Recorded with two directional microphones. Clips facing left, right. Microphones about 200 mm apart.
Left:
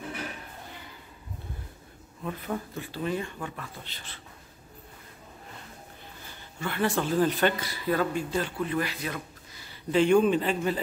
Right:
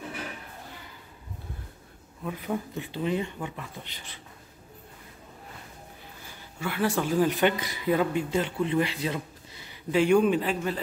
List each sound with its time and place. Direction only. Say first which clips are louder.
2.2 s speech: right 2 dB; 10° right (ahead or behind)
6.6 s speech: right 1 dB; 5° right (ahead or behind); by 9.8 s 25° right (ahead or behind)
9.8 s speech: even; 10° right (ahead or behind)